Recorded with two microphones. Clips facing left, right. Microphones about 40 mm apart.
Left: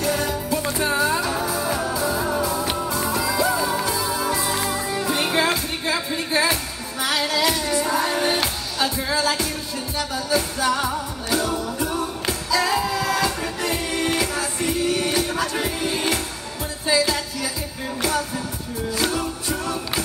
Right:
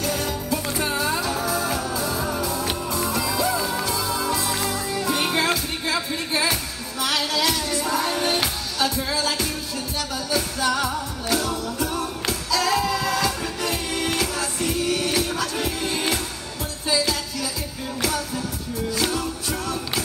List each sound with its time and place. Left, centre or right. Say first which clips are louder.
0.0 s music: left 3 dB; centre
18.9 s music: left 2 dB; centre